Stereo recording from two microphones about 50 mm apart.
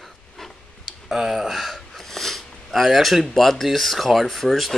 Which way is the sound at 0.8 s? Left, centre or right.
Centre.